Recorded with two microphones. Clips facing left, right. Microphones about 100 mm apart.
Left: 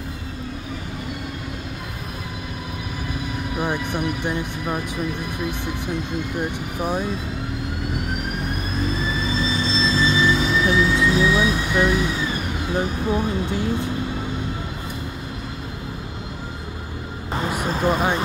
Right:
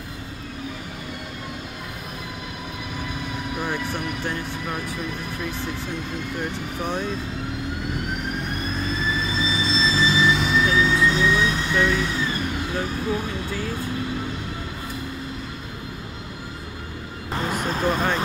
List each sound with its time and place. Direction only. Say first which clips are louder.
3.5 s speech: left 4 dB; 15° left (ahead or behind)
6.8 s speech: left 3 dB; 10° left (ahead or behind)
9.4 s vehicle: left 1 dB; centre (ahead or behind)
11.1 s speech: left 2 dB; 5° left (ahead or behind)
17.5 s speech: left 2 dB; 5° left (ahead or behind)